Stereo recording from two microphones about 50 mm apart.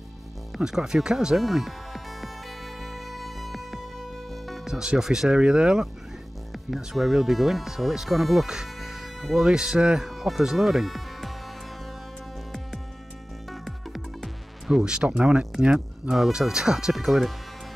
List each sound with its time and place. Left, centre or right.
0.7 s speech: centre
1.4 s music: centre
4.6 s speech: centre
6.5 s speech: centre
8.5 s music: centre
9.6 s speech: centre
10.0 s speech: centre
13.5 s music: centre
14.7 s speech: centre
16.1 s speech: centre
16.9 s speech: centre